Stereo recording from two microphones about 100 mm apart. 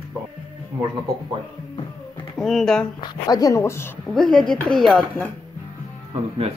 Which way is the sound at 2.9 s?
45° left (ahead or behind).